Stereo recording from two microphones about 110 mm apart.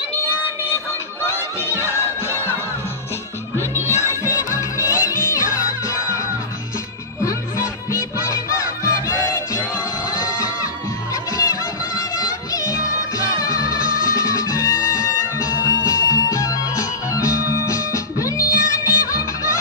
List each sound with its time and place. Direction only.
1.2 s battle cry: 20° left (ahead or behind)
4.1 s music: 25° left (ahead or behind)
7.2 s music: 25° left (ahead or behind)